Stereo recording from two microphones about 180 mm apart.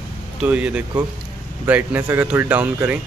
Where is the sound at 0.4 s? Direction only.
5° right (ahead or behind).